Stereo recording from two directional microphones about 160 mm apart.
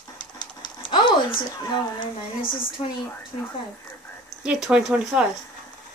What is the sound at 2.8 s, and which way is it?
Speech, 35° left (ahead or behind).